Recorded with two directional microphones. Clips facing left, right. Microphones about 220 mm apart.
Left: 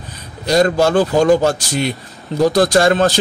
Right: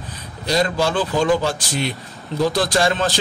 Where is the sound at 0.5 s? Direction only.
45° left (ahead or behind).